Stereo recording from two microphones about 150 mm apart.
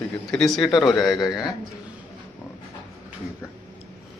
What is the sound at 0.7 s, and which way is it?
Speech, 30° left (ahead or behind).